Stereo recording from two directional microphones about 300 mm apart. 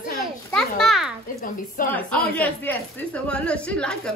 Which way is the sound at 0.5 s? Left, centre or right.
Centre.